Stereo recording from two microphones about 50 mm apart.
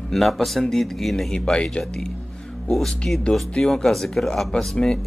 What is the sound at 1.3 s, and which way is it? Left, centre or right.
Speech, centre.